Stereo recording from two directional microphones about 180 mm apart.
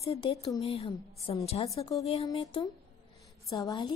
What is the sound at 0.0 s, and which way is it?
A woman's voice, 30° left (ahead or behind).